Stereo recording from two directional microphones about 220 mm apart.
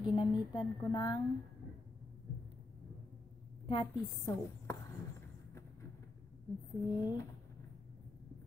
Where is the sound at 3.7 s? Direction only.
15° left (ahead or behind).